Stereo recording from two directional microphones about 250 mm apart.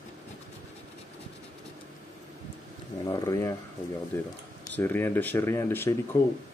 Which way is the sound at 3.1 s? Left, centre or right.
Centre.